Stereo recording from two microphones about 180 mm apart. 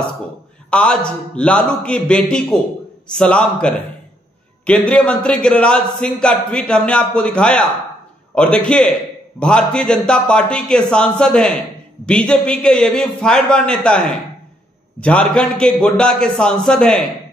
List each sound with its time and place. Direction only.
0.7 s speech: 5° left (ahead or behind)